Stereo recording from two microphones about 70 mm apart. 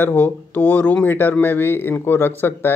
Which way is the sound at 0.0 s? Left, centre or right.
Left.